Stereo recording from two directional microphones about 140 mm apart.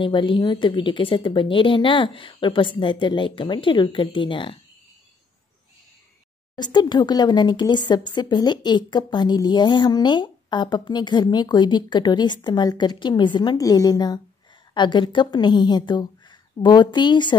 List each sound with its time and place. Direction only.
0.0 s a woman's voice: 35° left (ahead or behind)
6.5 s a woman's voice: 30° left (ahead or behind)